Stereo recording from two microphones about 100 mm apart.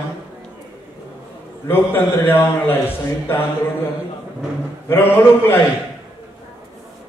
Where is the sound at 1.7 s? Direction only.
20° left (ahead or behind).